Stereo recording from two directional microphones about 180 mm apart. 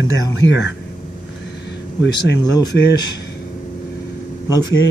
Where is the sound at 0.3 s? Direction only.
85° left.